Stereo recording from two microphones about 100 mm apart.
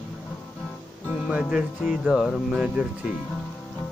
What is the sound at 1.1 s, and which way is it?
Music, 5° right (ahead or behind).